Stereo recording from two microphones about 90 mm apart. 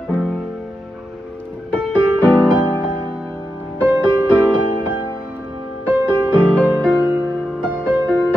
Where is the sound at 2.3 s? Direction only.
20° right (ahead or behind).